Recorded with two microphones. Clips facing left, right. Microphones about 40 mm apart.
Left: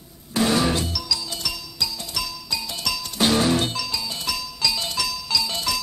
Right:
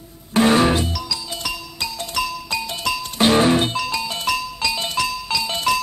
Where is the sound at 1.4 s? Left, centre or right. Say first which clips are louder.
Right 2 dB; right.